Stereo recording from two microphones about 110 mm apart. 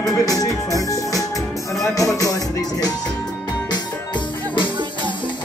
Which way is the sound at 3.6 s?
45° left (ahead or behind).